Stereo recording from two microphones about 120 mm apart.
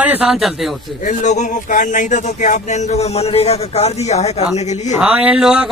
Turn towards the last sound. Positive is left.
turn(degrees=-5)  # may be behind; listen again after turning